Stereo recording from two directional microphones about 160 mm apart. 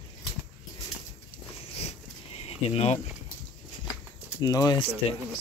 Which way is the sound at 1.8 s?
40° left (ahead or behind).